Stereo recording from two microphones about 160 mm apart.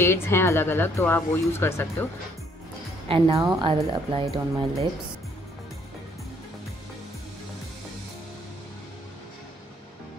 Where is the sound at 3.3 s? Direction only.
20° right (ahead or behind).